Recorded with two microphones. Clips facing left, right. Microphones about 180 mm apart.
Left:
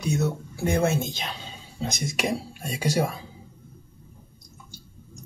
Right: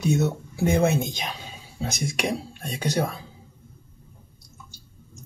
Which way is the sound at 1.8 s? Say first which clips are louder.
Right 1 dB; centre (ahead or behind).